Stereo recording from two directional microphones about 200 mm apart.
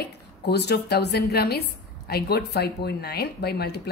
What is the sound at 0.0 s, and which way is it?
A woman's voice, 55° left (ahead or behind).